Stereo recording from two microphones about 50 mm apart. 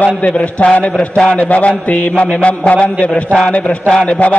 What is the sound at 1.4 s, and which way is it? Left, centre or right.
Mantra, left.